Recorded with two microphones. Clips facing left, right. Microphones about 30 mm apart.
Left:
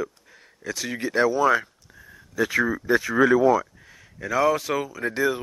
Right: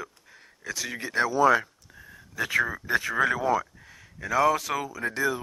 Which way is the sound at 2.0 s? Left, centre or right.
Centre.